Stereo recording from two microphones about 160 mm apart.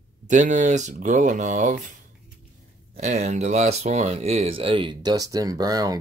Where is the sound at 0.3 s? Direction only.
50° right (ahead or behind).